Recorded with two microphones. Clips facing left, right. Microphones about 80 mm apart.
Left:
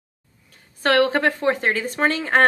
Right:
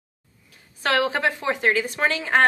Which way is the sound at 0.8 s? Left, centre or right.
Left.